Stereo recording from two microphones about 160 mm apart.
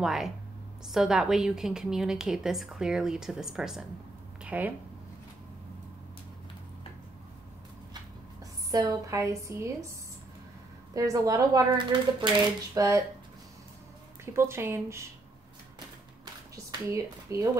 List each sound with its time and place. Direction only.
0.0 s a woman's voice: centre (ahead or behind)
8.7 s speech: 20° right (ahead or behind)
11.0 s speech: 20° right (ahead or behind)
14.2 s speech: 15° right (ahead or behind)
16.8 s speech: 20° right (ahead or behind)